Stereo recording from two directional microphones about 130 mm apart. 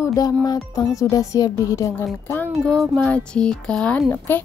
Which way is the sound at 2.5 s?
5° left (ahead or behind).